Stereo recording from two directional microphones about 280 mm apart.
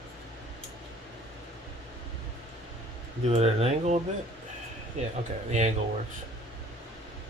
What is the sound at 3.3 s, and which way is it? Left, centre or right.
Speech, right.